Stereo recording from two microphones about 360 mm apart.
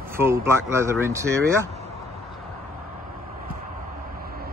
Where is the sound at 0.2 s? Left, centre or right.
Centre.